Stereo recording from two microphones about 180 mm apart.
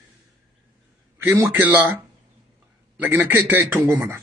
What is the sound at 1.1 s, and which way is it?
Speech, 15° right (ahead or behind).